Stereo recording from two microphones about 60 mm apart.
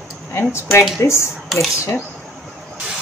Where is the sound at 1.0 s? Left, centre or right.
Left.